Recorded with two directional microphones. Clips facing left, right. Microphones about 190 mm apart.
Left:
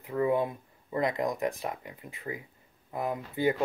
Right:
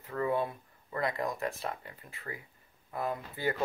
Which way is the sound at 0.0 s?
15° left (ahead or behind).